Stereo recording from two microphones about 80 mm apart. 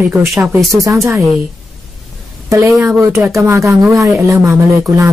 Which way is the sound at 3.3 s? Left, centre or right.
Right.